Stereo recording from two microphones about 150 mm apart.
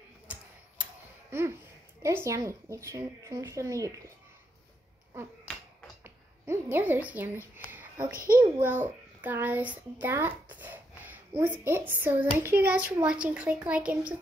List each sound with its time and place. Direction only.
0.3 s tick-tock: 10° right (ahead or behind)
1.3 s speech: 15° right (ahead or behind)
6.0 s a sound: 15° right (ahead or behind)
8.4 s a child's voice: 15° right (ahead or behind)